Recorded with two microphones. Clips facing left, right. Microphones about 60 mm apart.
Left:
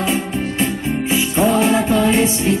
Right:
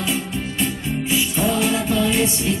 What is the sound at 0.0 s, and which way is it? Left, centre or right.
Music, left.